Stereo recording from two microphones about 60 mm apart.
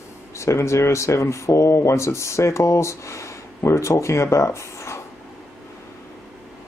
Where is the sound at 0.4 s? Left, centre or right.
Left.